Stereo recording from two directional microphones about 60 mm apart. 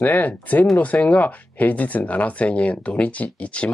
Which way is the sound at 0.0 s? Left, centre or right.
Left.